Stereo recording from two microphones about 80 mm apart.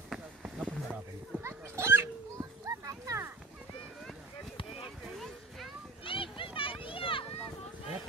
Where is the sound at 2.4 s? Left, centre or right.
Right.